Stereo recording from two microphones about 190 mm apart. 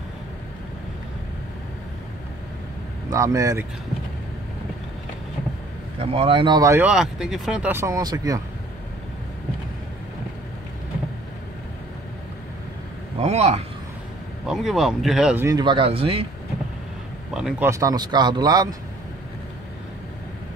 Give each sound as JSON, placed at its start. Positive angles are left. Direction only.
{"t": 3.1, "sound": "speech", "side_deg": -15}
{"t": 5.9, "sound": "speech", "side_deg": -30}
{"t": 13.2, "sound": "a man's voice", "side_deg": -35}
{"t": 14.4, "sound": "speech", "side_deg": 0}
{"t": 15.4, "sound": "speech", "side_deg": -25}
{"t": 17.3, "sound": "speech", "side_deg": -5}
{"t": 17.6, "sound": "speech", "side_deg": -15}